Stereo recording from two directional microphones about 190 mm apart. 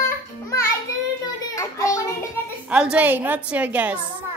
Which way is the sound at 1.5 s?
15° left (ahead or behind).